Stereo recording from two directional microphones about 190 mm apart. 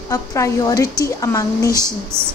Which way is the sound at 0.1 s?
15° left (ahead or behind).